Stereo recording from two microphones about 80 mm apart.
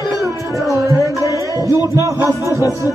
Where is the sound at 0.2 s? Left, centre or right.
Right.